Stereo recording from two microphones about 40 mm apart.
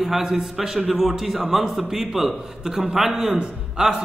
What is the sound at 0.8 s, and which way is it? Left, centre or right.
Speech, centre.